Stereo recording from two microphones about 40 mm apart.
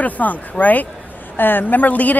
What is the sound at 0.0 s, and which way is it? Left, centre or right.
Speech, left.